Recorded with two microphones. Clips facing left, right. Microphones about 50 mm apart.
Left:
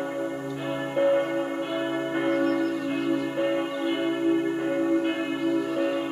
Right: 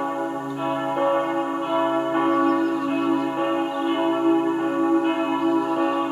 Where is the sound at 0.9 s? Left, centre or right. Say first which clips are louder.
Left 1 dB; right.